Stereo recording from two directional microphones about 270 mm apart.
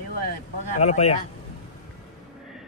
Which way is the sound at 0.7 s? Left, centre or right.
Left.